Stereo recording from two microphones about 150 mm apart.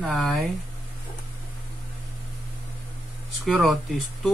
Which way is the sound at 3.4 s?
Centre (ahead or behind).